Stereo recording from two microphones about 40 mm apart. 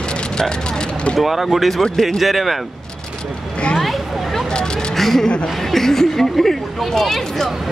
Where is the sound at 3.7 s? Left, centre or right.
Centre.